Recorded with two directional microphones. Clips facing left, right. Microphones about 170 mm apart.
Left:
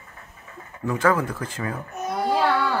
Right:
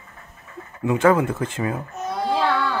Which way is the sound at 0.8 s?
25° right (ahead or behind).